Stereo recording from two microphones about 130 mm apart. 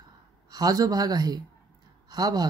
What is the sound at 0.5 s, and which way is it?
Speech, 30° right (ahead or behind).